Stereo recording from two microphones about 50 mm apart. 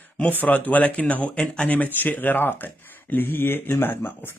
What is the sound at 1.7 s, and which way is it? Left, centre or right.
Speech, left.